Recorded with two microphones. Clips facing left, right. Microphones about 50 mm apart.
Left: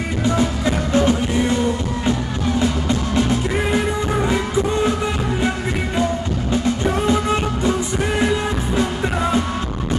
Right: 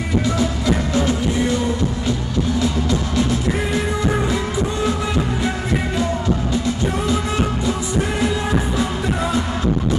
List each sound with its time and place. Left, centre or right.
0.2 s music: left
2.6 s music: left
6.8 s music: left